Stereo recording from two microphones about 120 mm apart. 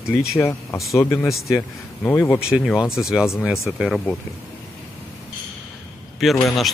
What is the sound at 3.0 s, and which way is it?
Speech, 5° right (ahead or behind).